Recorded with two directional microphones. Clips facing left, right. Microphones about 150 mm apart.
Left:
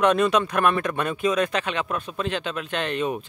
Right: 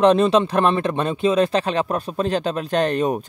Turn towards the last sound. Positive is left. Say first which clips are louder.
# right 6 dB
turn(degrees=-40)  # may be behind; listen again after turning